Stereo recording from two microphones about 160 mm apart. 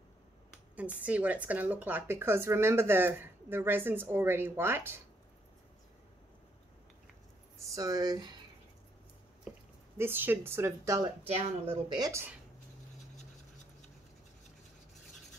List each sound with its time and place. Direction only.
0.7 s speech: 10° right (ahead or behind)
7.5 s speech: 20° right (ahead or behind)
9.9 s speech: 15° right (ahead or behind)
11.2 s speech: 40° right (ahead or behind)
12.0 s speech: 15° right (ahead or behind)